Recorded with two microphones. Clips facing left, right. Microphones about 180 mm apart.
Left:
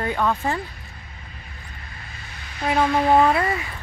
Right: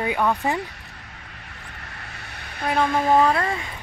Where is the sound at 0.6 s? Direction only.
75° right (ahead or behind).